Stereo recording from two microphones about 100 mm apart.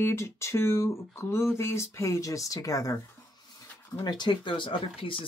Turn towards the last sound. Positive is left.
turn(degrees=60)  # may be behind; listen again after turning